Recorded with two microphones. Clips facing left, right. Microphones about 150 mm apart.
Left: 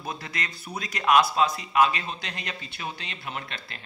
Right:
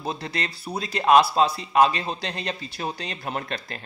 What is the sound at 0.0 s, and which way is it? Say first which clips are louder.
A man's voice: right 5 dB; 30° right (ahead or behind).